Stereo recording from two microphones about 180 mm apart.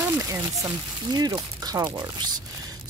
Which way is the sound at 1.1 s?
20° right (ahead or behind).